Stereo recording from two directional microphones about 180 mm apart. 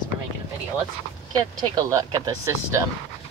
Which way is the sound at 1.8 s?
20° right (ahead or behind).